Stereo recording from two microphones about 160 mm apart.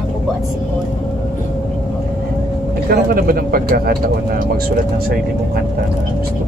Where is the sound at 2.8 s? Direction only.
80° right; by 5.1 s 65° right (ahead or behind).